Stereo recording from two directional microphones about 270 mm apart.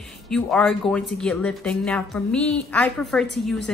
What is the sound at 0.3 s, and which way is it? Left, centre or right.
A woman's voice, centre.